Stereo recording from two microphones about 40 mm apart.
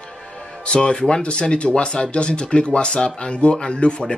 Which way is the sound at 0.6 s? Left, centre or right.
Left.